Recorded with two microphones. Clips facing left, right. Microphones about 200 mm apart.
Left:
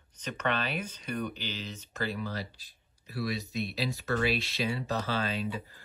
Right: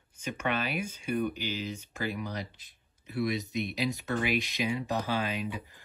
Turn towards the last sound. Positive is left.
turn(degrees=-15)  # may be behind; listen again after turning